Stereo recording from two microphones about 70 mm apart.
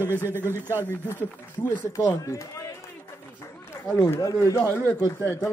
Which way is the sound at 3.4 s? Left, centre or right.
Left.